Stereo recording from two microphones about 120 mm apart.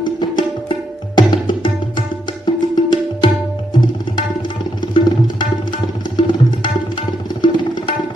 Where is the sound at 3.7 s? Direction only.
40° left (ahead or behind).